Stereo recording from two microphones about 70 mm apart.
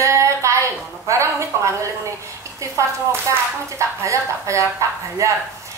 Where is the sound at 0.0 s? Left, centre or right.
Right.